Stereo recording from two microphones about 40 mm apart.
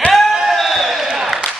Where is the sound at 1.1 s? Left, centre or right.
Centre.